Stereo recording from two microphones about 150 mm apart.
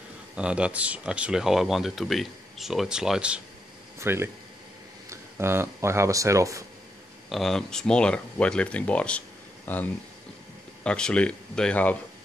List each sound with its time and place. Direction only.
0.4 s speech: 5° right (ahead or behind)
7.2 s speech: centre (ahead or behind)